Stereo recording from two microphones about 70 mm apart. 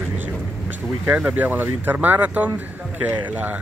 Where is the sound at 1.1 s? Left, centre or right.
Right.